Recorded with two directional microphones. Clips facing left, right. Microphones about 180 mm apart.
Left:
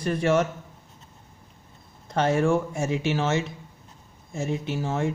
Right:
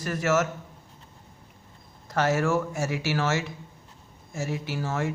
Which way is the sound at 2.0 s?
25° left (ahead or behind).